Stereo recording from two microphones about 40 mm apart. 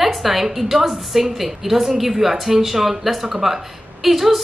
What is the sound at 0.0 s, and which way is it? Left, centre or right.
A woman's voice, centre.